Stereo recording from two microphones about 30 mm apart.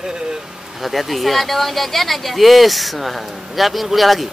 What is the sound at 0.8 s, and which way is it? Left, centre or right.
Speech, centre.